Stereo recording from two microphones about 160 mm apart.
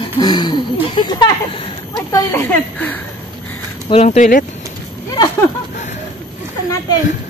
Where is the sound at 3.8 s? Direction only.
40° left (ahead or behind).